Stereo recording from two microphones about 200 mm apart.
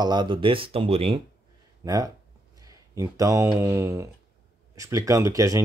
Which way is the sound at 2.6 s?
15° right (ahead or behind).